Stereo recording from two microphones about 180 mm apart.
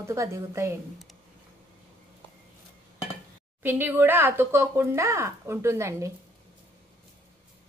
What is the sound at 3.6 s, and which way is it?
Speech, 10° right (ahead or behind).